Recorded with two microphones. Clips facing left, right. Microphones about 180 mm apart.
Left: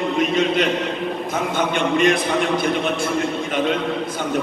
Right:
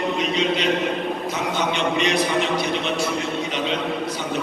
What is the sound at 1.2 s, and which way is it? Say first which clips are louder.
A man's voice: left 4 dB; 55° left (ahead or behind).